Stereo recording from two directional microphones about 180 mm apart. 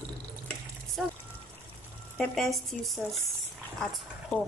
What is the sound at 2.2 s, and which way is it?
Speech, centre (ahead or behind).